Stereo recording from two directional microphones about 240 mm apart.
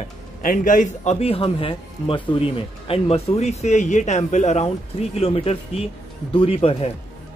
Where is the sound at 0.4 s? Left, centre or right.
Left.